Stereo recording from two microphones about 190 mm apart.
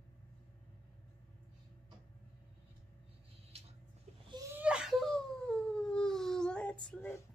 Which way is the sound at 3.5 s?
35° right (ahead or behind).